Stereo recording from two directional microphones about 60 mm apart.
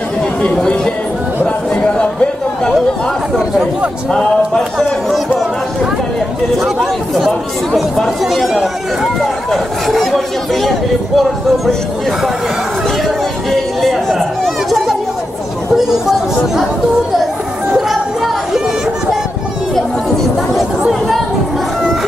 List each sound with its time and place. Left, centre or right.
0.6 s speech: centre
1.4 s chatter: centre
4.1 s a sound: centre
6.6 s chatter: centre
7.7 s speech: centre
13.5 s chatter: centre
15.7 s speech: centre
17.7 s music: centre